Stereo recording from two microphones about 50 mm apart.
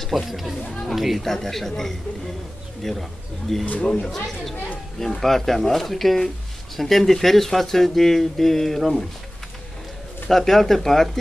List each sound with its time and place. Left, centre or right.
0.0 s speech: centre
3.8 s speech: centre
10.3 s speech: centre